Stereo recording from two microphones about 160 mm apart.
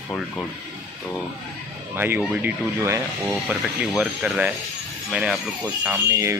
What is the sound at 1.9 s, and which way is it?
Speech, 10° right (ahead or behind).